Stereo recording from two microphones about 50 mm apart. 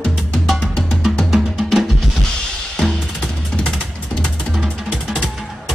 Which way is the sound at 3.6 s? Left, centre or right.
Centre.